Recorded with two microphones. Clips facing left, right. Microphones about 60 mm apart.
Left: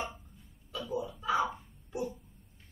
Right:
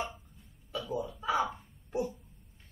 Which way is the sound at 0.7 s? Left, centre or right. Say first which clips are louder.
Right 1 dB; centre.